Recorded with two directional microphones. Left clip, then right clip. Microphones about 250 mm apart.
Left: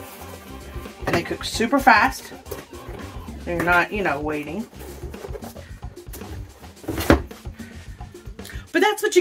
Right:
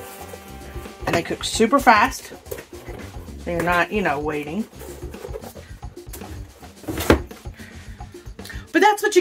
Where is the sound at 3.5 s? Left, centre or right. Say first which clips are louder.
Left 1 dB; right.